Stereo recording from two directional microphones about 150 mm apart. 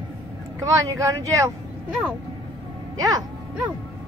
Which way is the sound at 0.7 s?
20° right (ahead or behind).